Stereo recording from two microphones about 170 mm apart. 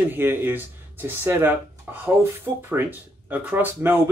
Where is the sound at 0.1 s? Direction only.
10° right (ahead or behind).